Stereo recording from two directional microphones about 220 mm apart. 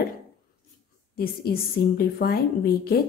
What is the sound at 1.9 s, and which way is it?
A woman's voice, 45° left (ahead or behind).